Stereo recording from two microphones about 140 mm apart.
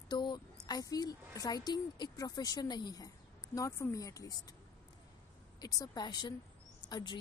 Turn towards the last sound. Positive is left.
turn(degrees=35)  # may be behind; listen again after turning